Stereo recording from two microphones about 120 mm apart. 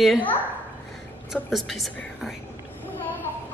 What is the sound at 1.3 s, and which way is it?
A woman's voice, centre (ahead or behind).